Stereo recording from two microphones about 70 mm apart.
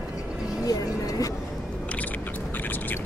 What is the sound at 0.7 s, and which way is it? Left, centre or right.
Vehicle, left.